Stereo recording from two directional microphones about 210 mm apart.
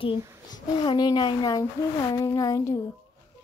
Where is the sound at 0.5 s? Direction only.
20° left (ahead or behind).